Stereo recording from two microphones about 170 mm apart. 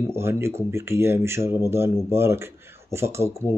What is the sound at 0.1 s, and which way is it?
Speech, 15° right (ahead or behind).